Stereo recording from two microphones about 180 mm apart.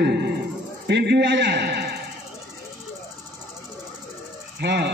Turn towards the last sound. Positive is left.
turn(degrees=-70)  # may be behind; listen again after turning